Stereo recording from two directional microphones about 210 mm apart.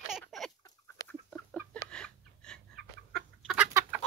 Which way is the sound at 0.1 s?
Centre (ahead or behind).